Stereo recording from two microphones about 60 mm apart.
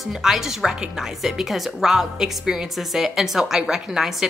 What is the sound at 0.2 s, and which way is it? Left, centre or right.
A woman's voice, centre.